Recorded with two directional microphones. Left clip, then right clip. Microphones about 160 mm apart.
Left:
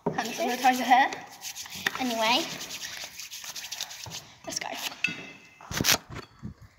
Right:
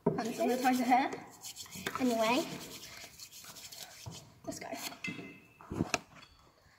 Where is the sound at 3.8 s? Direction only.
10° right (ahead or behind).